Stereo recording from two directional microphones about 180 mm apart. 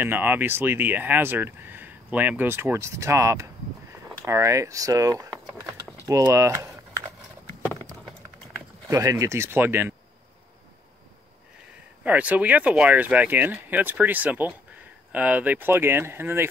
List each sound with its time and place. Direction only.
0.0 s speech: 10° right (ahead or behind)
8.9 s speech: 20° right (ahead or behind)
12.0 s speech: 10° right (ahead or behind)